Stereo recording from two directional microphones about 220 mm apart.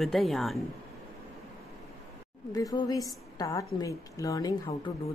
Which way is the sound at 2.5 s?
15° left (ahead or behind).